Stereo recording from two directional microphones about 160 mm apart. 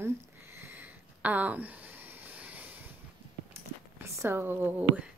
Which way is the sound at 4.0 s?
15° right (ahead or behind).